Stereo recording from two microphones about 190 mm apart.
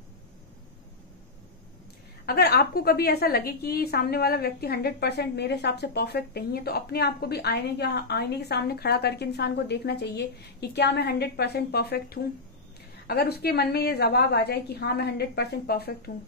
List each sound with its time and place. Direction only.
2.2 s a woman's voice: 55° left (ahead or behind)